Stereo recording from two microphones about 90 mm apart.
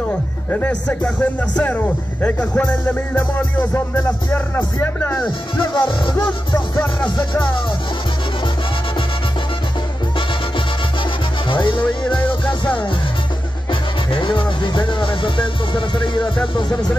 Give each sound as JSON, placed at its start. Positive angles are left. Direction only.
{"t": 0.5, "sound": "speech", "side_deg": 15}
{"t": 5.8, "sound": "speech", "side_deg": 65}
{"t": 6.1, "sound": "music", "side_deg": 40}
{"t": 11.4, "sound": "music", "side_deg": 70}
{"t": 11.8, "sound": "music", "side_deg": 15}
{"t": 14.1, "sound": "speech", "side_deg": 65}